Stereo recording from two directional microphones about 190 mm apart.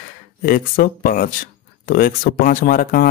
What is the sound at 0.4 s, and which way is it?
Speech, 50° left (ahead or behind).